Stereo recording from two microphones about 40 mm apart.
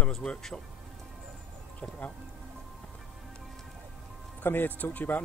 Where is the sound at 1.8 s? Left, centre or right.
Left.